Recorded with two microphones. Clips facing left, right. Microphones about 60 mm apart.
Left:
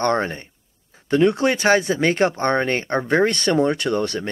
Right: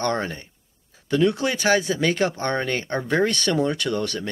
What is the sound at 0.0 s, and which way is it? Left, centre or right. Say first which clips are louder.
Speech: left 4 dB; left.